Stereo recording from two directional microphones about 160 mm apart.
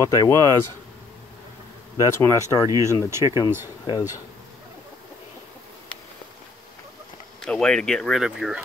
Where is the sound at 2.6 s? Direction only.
20° right (ahead or behind).